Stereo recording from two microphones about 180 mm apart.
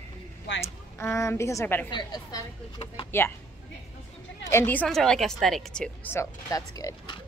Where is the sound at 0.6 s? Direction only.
15° left (ahead or behind).